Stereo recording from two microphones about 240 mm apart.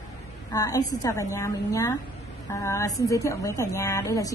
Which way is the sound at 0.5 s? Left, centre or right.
Centre.